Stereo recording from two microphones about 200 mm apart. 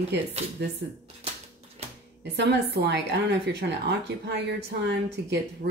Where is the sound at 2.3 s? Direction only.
55° right (ahead or behind).